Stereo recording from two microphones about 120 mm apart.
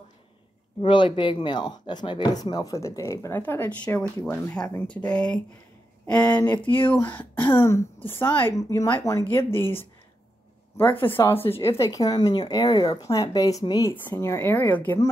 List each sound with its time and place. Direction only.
0.7 s a woman's voice: 45° left (ahead or behind); by 6.6 s 10° left (ahead or behind)
6.6 s speech: 45° left (ahead or behind)
6.9 s a woman's voice: 15° left (ahead or behind)
10.9 s speech: 45° left (ahead or behind)
11.1 s a woman's voice: 20° left (ahead or behind)